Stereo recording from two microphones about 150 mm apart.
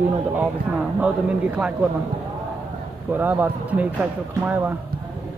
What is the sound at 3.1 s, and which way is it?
A man's voice, 10° right (ahead or behind).